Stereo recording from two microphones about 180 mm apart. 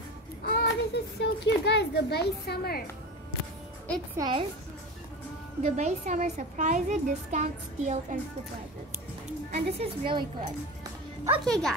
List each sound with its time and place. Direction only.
0.6 s a child's voice: 70° left (ahead or behind)
4.2 s a woman's voice: 25° right (ahead or behind)
5.6 s a child's voice: 40° right (ahead or behind)
9.5 s a child's voice: 35° right (ahead or behind)
11.4 s speech: 5° left (ahead or behind)